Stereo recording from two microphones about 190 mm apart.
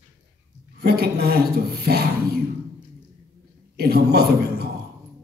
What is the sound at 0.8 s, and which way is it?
Speech, 55° right (ahead or behind).